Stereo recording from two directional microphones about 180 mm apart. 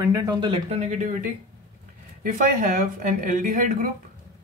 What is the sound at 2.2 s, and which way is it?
Speech, 50° right (ahead or behind).